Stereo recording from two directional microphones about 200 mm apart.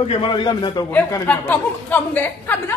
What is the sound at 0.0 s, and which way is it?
Speech, 25° left (ahead or behind).